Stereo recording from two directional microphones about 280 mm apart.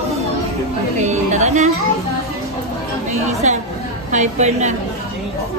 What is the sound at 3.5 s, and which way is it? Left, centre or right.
A woman's voice, right.